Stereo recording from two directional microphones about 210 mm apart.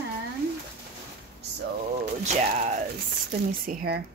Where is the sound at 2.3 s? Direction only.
30° right (ahead or behind).